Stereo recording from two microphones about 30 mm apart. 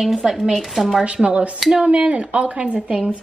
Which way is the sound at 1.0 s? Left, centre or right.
Right.